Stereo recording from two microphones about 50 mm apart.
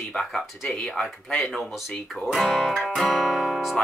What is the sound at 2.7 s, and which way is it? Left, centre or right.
Music, centre.